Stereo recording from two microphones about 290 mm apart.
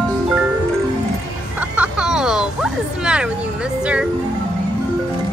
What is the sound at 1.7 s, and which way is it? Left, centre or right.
Music, centre.